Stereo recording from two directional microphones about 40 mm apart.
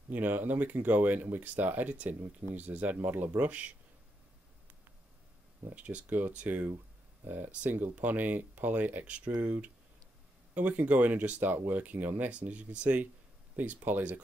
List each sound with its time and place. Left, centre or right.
0.1 s speech: right
5.8 s speech: right
7.2 s speech: right
11.4 s speech: right